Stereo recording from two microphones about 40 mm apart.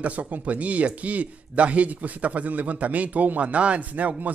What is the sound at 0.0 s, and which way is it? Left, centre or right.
Speech, right.